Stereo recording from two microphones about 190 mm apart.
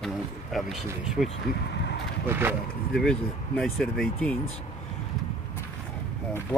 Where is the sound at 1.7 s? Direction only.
65° left (ahead or behind).